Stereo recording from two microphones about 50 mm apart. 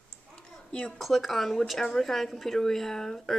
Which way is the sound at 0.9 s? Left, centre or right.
Centre.